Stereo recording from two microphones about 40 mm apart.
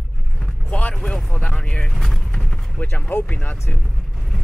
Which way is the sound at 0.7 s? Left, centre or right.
Left.